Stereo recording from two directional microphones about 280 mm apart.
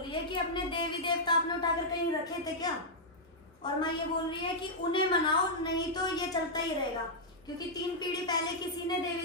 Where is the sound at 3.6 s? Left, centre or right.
Centre.